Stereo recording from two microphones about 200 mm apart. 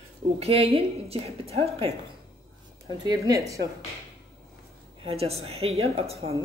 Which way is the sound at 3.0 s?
20° right (ahead or behind).